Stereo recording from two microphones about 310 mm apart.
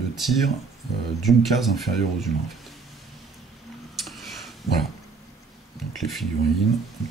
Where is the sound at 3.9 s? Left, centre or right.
Centre.